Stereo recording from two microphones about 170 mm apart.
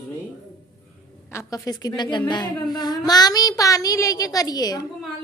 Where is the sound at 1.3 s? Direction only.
20° left (ahead or behind).